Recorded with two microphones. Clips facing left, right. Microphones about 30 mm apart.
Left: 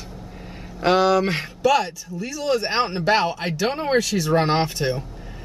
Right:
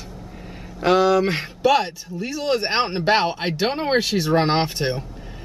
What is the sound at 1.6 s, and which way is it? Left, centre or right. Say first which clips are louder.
Speech: right 1 dB; right.